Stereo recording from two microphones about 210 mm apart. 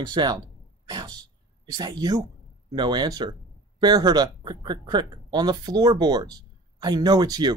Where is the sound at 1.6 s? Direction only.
20° right (ahead or behind).